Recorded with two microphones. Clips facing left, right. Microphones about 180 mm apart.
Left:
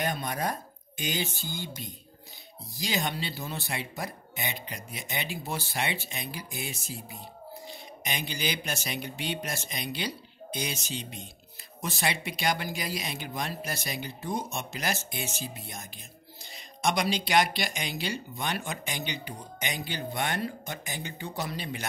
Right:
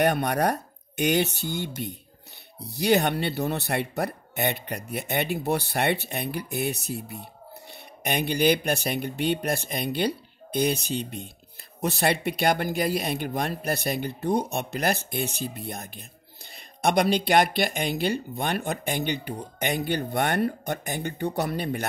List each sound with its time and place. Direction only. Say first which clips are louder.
0.0 s speech: right 8 dB; 65° right (ahead or behind)